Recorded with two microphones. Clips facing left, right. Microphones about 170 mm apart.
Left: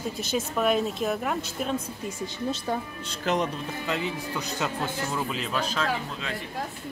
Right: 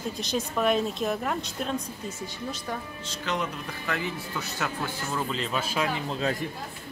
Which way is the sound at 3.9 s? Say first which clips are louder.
Left 1 dB; 20° left (ahead or behind).